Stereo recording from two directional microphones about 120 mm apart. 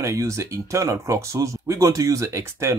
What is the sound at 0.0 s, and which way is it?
Speech, 25° right (ahead or behind).